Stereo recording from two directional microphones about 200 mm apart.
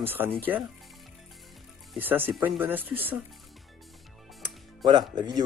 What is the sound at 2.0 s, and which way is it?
Speech, 10° right (ahead or behind).